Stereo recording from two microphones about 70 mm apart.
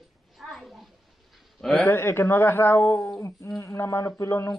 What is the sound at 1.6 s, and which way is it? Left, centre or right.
Speech, centre.